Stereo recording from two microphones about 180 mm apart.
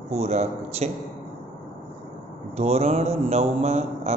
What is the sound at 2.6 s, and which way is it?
A man's voice, 35° right (ahead or behind).